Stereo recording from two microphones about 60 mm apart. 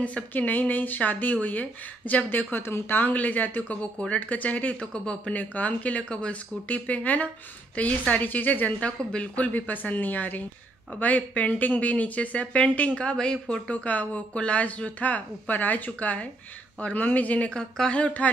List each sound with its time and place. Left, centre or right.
0.0 s speech: left
4.9 s speech: centre; by 8.7 s left
8.7 s speech: centre
17.5 s speech: centre